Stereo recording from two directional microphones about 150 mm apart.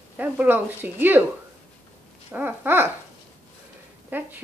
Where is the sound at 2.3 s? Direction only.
15° right (ahead or behind).